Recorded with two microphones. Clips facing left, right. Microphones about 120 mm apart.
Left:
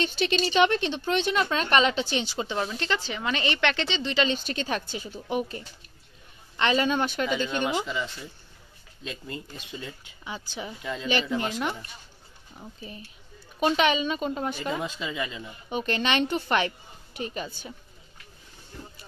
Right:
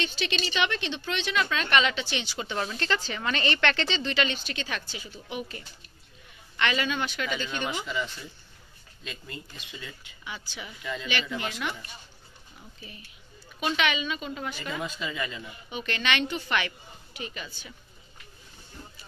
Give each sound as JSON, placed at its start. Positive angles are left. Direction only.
{"t": 0.0, "sound": "speech", "side_deg": 40}
{"t": 2.5, "sound": "a woman's voice", "side_deg": 10}
{"t": 4.6, "sound": "speech", "side_deg": 40}
{"t": 7.2, "sound": "speech", "side_deg": 20}
{"t": 9.0, "sound": "speech", "side_deg": 35}
{"t": 11.1, "sound": "speech", "side_deg": 35}
{"t": 15.7, "sound": "speech", "side_deg": 40}